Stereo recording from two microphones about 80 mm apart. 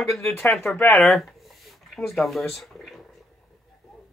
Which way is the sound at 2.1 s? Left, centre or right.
Centre.